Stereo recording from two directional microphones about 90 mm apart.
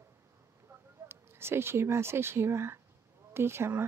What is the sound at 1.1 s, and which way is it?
Speech, 25° right (ahead or behind).